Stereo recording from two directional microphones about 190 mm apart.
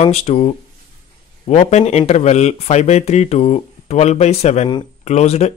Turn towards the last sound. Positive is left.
turn(degrees=35)  # may be behind; listen again after turning